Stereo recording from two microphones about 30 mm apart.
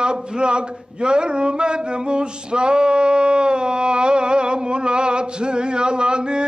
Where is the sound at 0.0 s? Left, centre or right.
Right.